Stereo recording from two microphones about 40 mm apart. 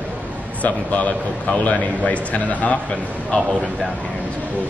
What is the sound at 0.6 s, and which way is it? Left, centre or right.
A man's voice, left.